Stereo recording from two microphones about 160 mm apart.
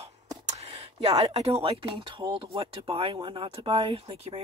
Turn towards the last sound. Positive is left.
turn(degrees=-35)  # may be behind; listen again after turning